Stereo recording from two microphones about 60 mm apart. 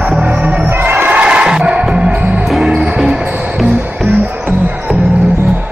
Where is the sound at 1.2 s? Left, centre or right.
Centre.